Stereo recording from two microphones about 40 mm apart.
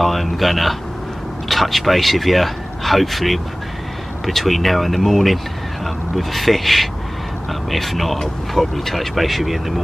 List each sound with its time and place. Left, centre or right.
0.0 s speech: centre